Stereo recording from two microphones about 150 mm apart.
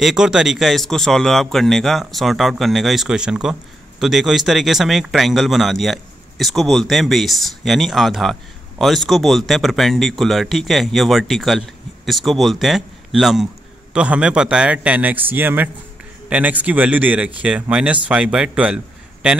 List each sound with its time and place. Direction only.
0.0 s a man's voice: 5° right (ahead or behind)